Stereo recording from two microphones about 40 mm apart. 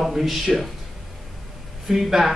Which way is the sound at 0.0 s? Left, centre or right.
Centre.